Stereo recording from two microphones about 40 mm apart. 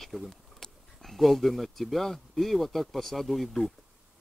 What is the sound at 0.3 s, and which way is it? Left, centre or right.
Speech, centre.